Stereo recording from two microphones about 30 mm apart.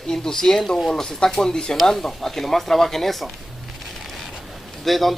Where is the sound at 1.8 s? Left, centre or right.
Centre.